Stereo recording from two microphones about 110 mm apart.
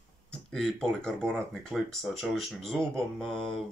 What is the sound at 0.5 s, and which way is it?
Speech, 5° left (ahead or behind).